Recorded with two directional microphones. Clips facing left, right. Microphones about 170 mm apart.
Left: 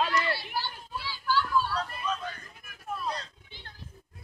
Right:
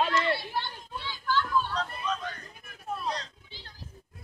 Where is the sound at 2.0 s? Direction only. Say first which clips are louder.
Even; 10° left (ahead or behind).